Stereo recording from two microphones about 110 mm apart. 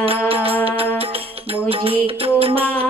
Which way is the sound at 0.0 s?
60° right (ahead or behind).